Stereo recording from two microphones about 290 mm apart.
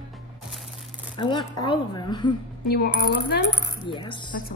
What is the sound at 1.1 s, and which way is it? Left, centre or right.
A woman's voice, centre.